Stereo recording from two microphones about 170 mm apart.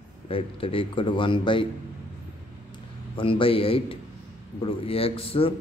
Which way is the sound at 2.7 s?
30° left (ahead or behind).